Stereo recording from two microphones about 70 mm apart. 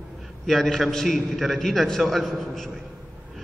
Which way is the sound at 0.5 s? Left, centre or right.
Centre.